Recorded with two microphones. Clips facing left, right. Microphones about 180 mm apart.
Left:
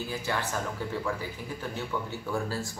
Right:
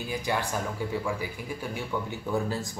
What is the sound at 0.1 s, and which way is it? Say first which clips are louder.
Speech: right 4 dB; 15° right (ahead or behind).